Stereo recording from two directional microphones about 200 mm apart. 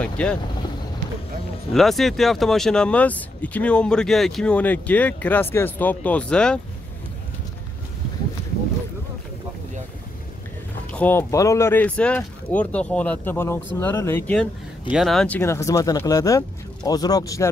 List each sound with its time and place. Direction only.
0.0 s speech: 5° left (ahead or behind)
1.7 s speech: centre (ahead or behind)
10.9 s speech: 10° left (ahead or behind)